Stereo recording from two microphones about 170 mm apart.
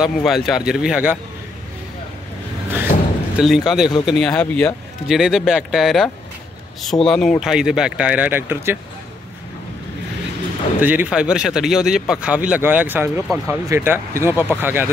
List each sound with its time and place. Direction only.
0.0 s speech: centre (ahead or behind)
2.9 s a sound: 50° left (ahead or behind)
3.3 s speech: centre (ahead or behind)
10.8 s speech: 10° right (ahead or behind)